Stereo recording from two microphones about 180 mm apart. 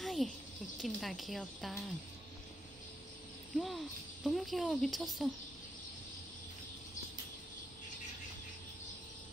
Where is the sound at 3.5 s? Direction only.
Centre (ahead or behind).